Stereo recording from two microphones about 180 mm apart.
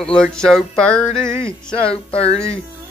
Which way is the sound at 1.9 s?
35° left (ahead or behind).